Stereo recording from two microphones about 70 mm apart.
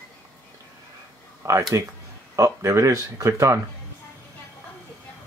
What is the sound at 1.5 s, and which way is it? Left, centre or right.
Speech, right.